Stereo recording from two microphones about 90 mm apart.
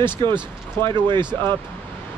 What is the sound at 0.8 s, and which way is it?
Speech, 60° right (ahead or behind).